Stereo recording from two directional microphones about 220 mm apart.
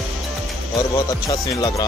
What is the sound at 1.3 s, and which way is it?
Speech, 15° left (ahead or behind).